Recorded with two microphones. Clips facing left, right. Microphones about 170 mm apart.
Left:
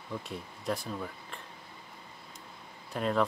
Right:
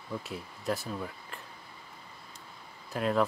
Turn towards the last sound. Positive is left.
turn(degrees=0)  # may be behind; listen again after turning